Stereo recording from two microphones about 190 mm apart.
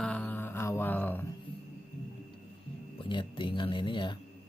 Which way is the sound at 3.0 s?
25° left (ahead or behind).